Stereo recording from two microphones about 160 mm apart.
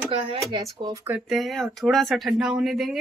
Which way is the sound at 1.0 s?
5° right (ahead or behind).